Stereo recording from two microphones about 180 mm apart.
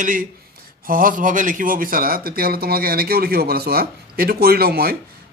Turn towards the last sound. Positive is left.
turn(degrees=-60)  # may be behind; listen again after turning